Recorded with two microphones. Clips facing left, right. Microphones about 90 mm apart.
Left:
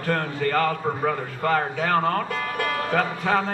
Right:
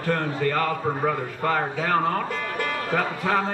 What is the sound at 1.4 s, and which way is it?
A man's voice, 15° right (ahead or behind).